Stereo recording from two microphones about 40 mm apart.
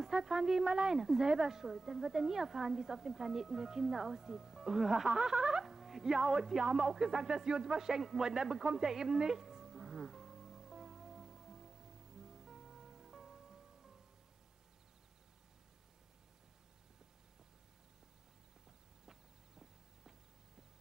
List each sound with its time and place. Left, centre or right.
0.0 s a woman's voice: centre
5.5 s a sound: centre
6.3 s a woman's voice: centre
8.7 s music: centre
19.0 s walk: centre